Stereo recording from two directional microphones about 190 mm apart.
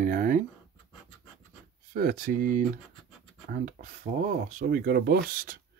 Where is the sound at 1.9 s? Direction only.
50° right (ahead or behind).